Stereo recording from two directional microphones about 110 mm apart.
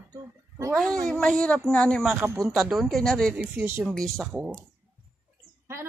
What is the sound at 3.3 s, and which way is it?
Speech, 10° right (ahead or behind).